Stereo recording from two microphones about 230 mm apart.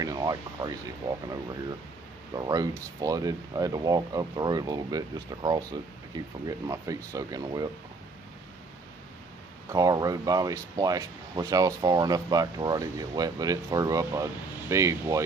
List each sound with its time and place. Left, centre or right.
0.0 s speech: centre
2.3 s speech: centre
9.7 s speech: centre